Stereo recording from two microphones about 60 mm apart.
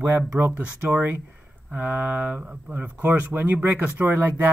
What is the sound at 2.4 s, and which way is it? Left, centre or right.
Speech, centre.